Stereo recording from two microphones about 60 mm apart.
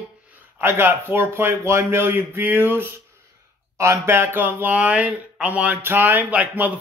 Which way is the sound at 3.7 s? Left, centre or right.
Right.